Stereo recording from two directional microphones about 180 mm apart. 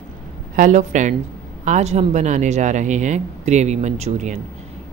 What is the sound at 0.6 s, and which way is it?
A woman's voice, 45° right (ahead or behind).